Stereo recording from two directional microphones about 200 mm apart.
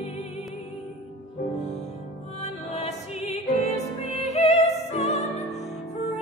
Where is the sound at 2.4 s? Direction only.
35° left (ahead or behind).